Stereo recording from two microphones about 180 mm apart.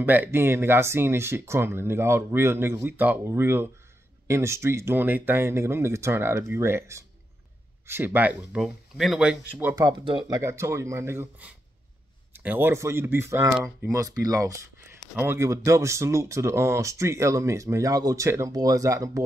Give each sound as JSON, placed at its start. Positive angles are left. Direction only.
{"t": 0.0, "sound": "speech", "side_deg": -10}
{"t": 9.8, "sound": "speech", "side_deg": -25}
{"t": 10.4, "sound": "speech", "side_deg": -15}